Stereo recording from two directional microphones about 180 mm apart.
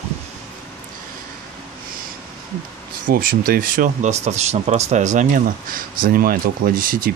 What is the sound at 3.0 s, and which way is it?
Speech, 50° right (ahead or behind).